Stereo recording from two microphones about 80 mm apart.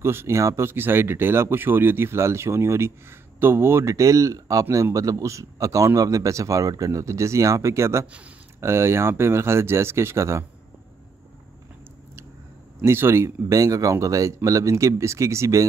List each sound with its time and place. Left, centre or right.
0.0 s a man's voice: right
12.8 s speech: right